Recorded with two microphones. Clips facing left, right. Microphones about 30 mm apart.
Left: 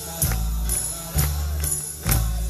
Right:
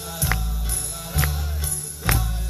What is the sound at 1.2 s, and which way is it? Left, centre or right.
Music, centre.